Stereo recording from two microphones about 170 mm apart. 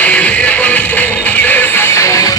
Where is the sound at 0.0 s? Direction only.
10° left (ahead or behind).